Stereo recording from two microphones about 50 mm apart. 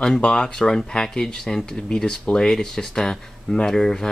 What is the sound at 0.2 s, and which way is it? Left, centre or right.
Speech, centre.